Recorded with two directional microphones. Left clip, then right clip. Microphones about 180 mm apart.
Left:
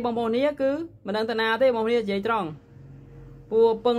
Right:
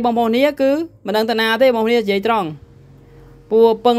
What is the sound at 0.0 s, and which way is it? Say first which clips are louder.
Speech: right 9 dB; 35° right (ahead or behind).